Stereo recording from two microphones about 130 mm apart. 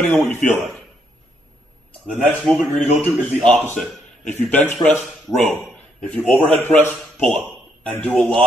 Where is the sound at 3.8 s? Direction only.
Centre (ahead or behind).